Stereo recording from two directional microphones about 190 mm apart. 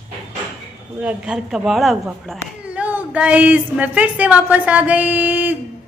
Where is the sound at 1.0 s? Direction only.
5° right (ahead or behind).